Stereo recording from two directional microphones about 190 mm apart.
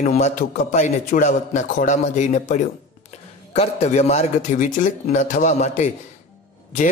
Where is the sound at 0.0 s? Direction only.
40° left (ahead or behind).